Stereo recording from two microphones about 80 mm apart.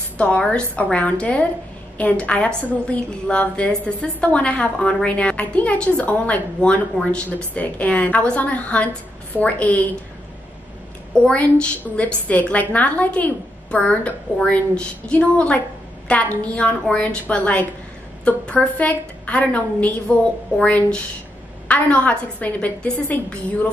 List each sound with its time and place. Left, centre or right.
0.2 s a woman's voice: centre
11.3 s a woman's voice: centre